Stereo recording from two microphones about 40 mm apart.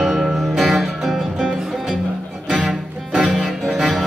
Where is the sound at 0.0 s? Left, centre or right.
Centre.